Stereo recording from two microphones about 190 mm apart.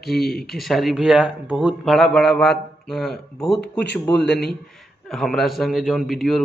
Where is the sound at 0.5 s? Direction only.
Centre (ahead or behind).